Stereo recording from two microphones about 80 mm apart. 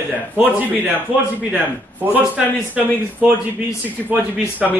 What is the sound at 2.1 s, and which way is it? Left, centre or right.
Speech, centre.